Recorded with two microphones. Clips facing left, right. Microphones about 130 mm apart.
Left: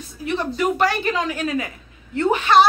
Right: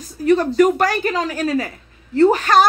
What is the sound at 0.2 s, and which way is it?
A woman's voice, 45° right (ahead or behind).